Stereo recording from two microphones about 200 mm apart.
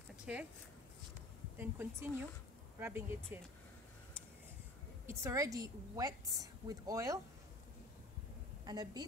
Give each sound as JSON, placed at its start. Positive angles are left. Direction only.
{"t": 0.2, "sound": "a sound", "side_deg": -5}
{"t": 1.6, "sound": "a woman's voice", "side_deg": -10}
{"t": 5.0, "sound": "a woman's voice", "side_deg": -15}
{"t": 8.6, "sound": "a woman's voice", "side_deg": -20}